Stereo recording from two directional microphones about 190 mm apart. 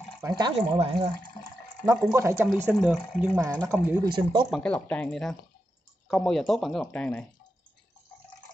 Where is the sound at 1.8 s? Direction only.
15° right (ahead or behind).